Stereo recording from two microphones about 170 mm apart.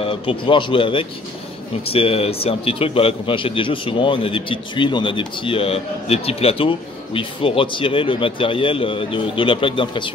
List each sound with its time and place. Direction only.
0.0 s a man's voice: 30° left (ahead or behind)